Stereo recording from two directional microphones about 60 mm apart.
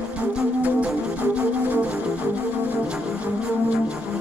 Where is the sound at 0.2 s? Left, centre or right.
Right.